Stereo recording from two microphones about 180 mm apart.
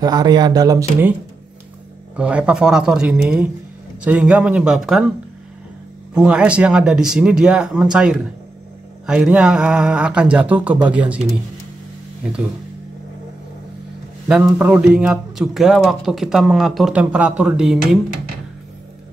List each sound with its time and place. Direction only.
0.0 s speech: 20° right (ahead or behind)
2.1 s speech: 5° right (ahead or behind)
6.1 s speech: 5° right (ahead or behind)
14.2 s speech: 10° right (ahead or behind)